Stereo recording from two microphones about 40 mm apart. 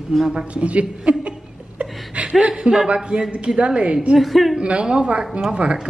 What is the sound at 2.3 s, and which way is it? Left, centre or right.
A woman's voice, right.